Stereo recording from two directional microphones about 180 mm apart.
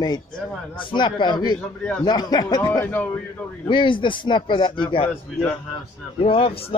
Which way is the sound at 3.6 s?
25° left (ahead or behind).